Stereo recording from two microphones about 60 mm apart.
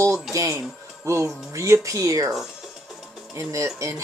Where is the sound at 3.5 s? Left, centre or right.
Right.